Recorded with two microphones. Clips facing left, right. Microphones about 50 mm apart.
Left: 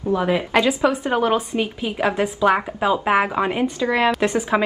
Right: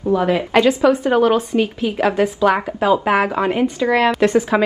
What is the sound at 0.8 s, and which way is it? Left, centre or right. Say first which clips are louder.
Speech: right 5 dB; centre.